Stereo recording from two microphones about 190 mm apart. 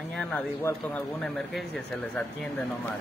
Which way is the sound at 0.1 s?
5° left (ahead or behind).